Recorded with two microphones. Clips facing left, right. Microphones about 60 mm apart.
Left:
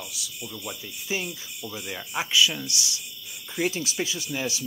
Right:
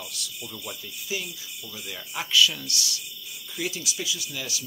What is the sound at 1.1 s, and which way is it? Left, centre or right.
Speech, left.